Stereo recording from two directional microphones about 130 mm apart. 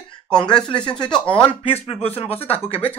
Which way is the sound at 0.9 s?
5° left (ahead or behind).